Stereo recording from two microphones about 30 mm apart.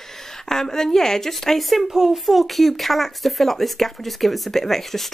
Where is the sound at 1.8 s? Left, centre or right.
Centre.